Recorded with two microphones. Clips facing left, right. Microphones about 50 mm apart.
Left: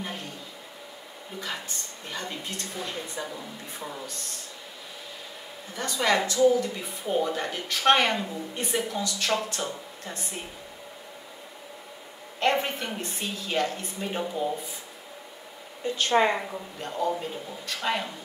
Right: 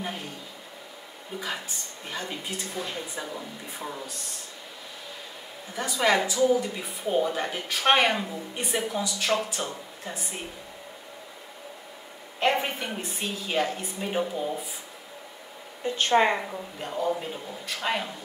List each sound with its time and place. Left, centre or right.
1.4 s a woman's voice: centre
5.8 s a woman's voice: centre
12.4 s a woman's voice: centre
16.1 s a woman's voice: centre
16.8 s a woman's voice: centre